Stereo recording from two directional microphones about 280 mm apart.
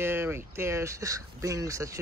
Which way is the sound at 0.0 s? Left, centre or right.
Centre.